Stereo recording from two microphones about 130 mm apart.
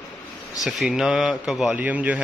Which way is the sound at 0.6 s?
5° right (ahead or behind).